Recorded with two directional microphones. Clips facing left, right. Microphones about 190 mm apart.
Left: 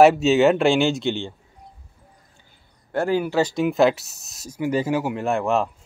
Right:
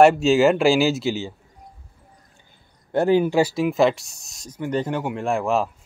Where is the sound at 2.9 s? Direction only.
20° right (ahead or behind).